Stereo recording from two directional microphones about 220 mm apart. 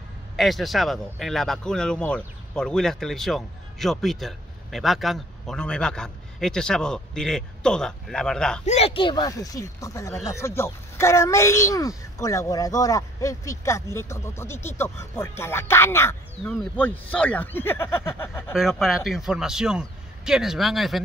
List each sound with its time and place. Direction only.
0.4 s speech: centre (ahead or behind)
8.6 s speech: 25° left (ahead or behind); by 18.4 s 10° left (ahead or behind)
18.5 s speech: centre (ahead or behind)